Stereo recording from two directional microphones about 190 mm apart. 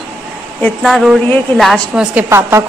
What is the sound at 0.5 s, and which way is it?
A woman's voice, 5° left (ahead or behind).